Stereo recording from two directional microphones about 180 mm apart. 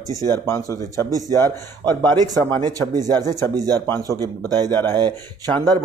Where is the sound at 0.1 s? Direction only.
15° left (ahead or behind).